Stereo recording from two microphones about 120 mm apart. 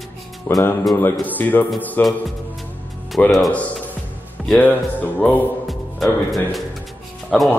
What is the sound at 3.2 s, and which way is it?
Speech, 15° left (ahead or behind).